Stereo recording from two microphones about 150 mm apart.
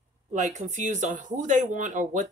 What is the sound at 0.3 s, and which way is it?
Speech, 50° right (ahead or behind).